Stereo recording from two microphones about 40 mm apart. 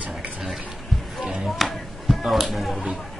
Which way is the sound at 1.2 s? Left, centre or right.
Centre.